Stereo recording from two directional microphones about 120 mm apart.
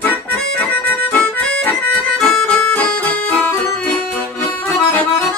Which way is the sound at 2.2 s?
5° left (ahead or behind).